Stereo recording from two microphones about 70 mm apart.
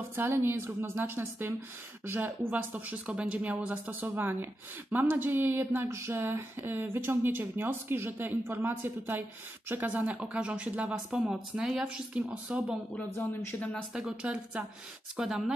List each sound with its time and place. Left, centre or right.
0.1 s speech: right; by 12.7 s centre
13.2 s speech: left
14.2 s speech: centre